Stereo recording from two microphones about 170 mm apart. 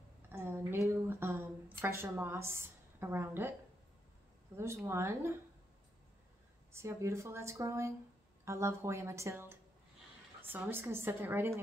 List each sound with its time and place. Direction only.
0.3 s a sound: 15° right (ahead or behind)
4.6 s speech: 15° right (ahead or behind)
6.7 s speech: 15° right (ahead or behind)